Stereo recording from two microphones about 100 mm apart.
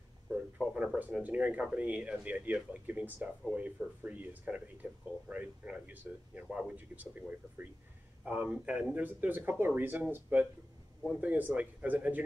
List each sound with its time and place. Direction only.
0.3 s speech: 5° right (ahead or behind)